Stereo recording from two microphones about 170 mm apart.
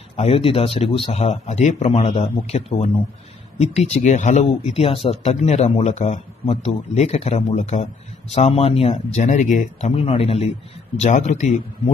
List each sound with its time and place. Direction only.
0.1 s speech: 35° left (ahead or behind)